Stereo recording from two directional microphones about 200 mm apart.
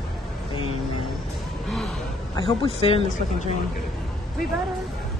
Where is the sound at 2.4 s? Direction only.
30° left (ahead or behind).